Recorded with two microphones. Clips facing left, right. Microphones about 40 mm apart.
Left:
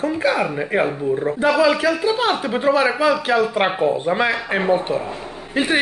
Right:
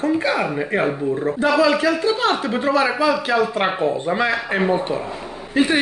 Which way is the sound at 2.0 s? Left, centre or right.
Centre.